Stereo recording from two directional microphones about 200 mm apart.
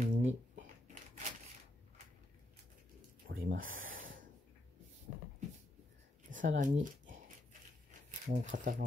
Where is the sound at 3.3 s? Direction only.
45° right (ahead or behind).